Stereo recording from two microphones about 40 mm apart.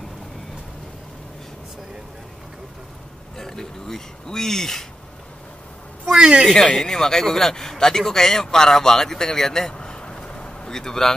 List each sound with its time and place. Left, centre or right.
3.3 s speech: centre
6.0 s a woman's voice: centre
6.5 s a man's voice: centre